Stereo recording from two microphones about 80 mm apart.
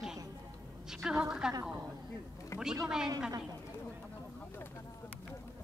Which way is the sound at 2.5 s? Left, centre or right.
Left.